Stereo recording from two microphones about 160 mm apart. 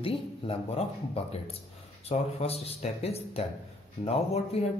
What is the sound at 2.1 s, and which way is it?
Speech, 40° left (ahead or behind).